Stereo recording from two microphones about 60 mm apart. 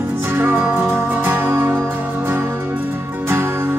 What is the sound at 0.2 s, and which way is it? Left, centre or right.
Music, right.